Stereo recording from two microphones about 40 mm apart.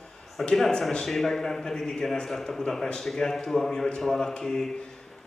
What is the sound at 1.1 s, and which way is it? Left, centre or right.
A man's voice, centre.